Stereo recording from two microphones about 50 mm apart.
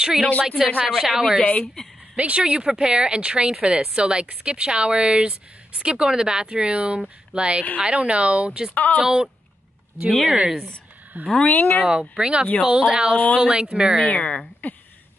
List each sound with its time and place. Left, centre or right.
0.0 s a woman's voice: centre
1.4 s speech: left
2.1 s speech: right
8.7 s speech: left
9.0 s a woman's voice: centre
11.4 s speech: left
11.9 s a woman's voice: centre
14.6 s speech: left